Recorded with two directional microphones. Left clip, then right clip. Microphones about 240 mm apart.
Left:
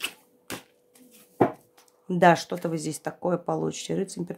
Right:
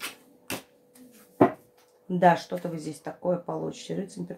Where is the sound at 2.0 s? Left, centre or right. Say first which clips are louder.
Left 2 dB; left.